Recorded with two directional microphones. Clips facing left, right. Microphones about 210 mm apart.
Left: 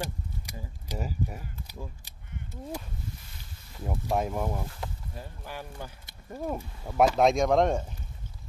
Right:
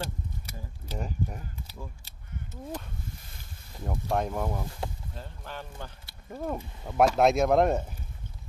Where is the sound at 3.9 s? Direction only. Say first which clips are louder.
Even; 5° left (ahead or behind).